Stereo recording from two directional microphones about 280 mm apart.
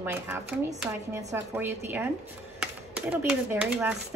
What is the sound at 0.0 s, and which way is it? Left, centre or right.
Speech, centre.